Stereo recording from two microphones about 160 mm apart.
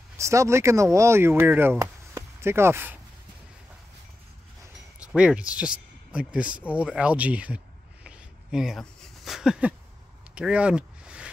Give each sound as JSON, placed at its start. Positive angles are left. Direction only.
{"t": 0.2, "sound": "speech", "side_deg": -20}
{"t": 5.0, "sound": "speech", "side_deg": -5}
{"t": 6.7, "sound": "a sound", "side_deg": -5}